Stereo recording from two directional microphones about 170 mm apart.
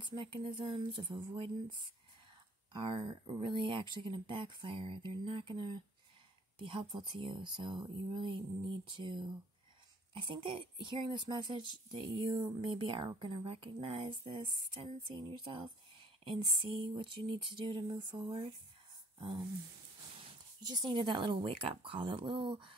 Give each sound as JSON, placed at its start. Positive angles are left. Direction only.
{"t": 0.0, "sound": "speech", "side_deg": -30}
{"t": 2.7, "sound": "speech", "side_deg": -30}